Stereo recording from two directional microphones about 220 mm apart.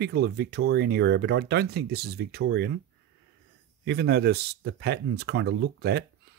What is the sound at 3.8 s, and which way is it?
Speech, 50° right (ahead or behind).